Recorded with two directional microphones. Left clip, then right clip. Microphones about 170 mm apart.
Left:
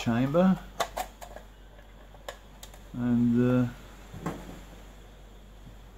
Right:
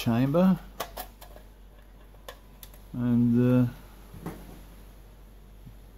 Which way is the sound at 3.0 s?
55° right (ahead or behind).